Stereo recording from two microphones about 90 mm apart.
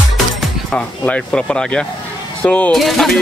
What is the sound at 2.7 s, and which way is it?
Speech, centre (ahead or behind).